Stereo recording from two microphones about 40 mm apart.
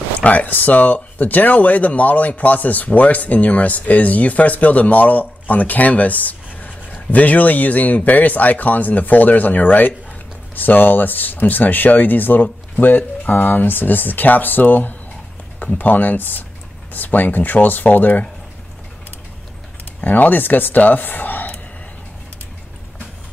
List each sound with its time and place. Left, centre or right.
0.2 s speech: left
20.0 s speech: left